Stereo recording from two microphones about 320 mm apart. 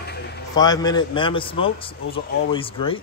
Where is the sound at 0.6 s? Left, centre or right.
Centre.